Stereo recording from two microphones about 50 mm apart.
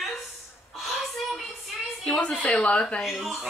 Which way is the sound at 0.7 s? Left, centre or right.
Centre.